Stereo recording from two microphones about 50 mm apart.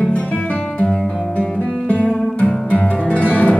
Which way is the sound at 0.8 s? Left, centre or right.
Left.